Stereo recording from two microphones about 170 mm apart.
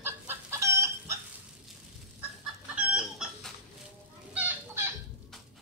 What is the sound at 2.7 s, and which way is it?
Chicken, 5° right (ahead or behind).